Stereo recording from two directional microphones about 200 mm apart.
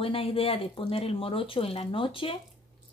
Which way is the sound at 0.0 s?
30° left (ahead or behind).